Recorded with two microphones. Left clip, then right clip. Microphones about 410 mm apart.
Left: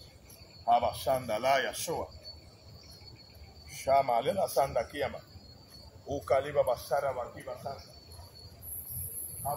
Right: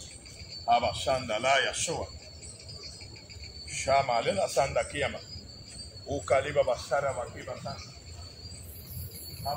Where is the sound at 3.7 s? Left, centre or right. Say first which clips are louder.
Right 1 dB; left.